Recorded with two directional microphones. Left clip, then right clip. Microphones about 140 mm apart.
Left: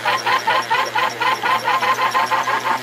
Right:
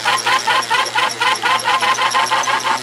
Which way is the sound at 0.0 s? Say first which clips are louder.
Right 2 dB; 40° right (ahead or behind).